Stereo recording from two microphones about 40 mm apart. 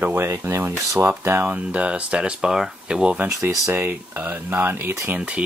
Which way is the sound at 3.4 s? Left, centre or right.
Right.